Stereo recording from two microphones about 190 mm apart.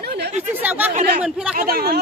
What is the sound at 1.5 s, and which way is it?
Speech, 50° right (ahead or behind).